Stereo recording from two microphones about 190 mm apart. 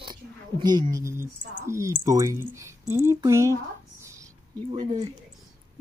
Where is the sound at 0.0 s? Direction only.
25° right (ahead or behind).